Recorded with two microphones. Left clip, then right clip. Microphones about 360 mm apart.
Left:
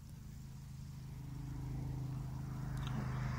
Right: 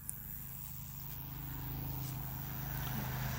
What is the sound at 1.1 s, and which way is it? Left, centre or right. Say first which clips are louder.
Vehicle: right 2 dB; right.